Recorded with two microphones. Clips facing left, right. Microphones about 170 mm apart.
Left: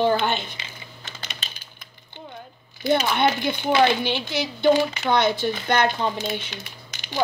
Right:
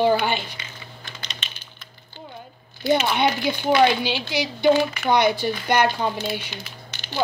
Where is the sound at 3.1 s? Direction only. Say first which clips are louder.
Even; 15° right (ahead or behind).